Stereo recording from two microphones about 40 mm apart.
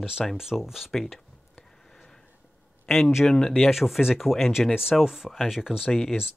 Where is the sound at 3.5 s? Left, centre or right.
Centre.